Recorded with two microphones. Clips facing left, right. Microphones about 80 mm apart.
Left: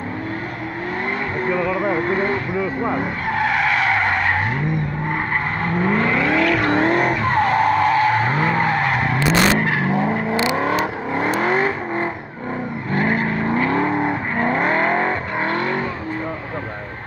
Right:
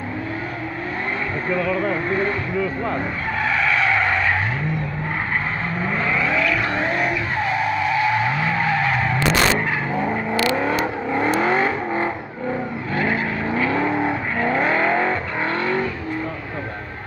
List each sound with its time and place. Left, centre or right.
1.5 s speech: centre
5.9 s vehicle: left
10.0 s vehicle: centre
12.9 s vehicle: left